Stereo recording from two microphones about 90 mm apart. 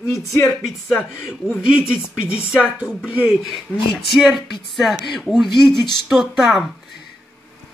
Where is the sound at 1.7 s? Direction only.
10° right (ahead or behind).